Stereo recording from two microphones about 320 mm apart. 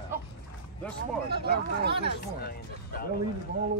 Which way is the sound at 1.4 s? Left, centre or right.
Right.